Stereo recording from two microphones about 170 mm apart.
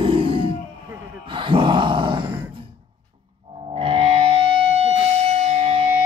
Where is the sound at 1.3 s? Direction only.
30° right (ahead or behind).